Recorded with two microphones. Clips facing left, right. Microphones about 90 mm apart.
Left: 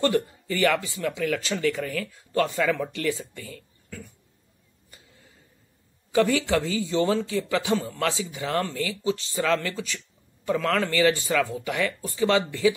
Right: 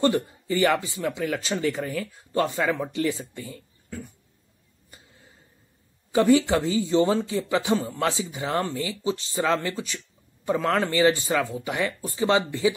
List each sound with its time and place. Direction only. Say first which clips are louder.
0.0 s speech: right 1 dB; 20° right (ahead or behind)
6.1 s speech: right 3 dB; 25° right (ahead or behind)